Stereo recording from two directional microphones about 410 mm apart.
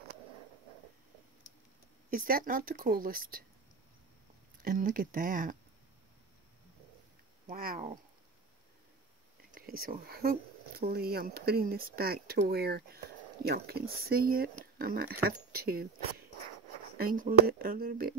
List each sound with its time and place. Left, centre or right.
2.0 s speech: right
4.6 s speech: centre
7.4 s speech: right
9.5 s speech: right
17.0 s speech: centre